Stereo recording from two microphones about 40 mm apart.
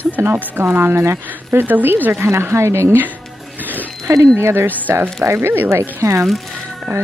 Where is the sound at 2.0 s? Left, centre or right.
Right.